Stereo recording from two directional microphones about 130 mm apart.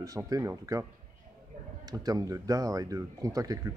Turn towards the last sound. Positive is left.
turn(degrees=-25)  # may be behind; listen again after turning